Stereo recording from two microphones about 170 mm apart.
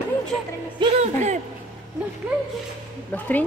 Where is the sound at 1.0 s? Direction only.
40° right (ahead or behind).